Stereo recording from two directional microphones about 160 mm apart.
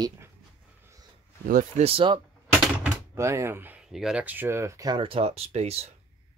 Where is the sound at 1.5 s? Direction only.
60° right (ahead or behind).